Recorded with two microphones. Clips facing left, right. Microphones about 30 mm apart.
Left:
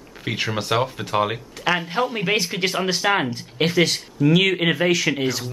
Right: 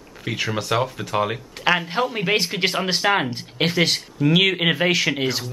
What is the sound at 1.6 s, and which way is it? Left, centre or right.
Speech, centre.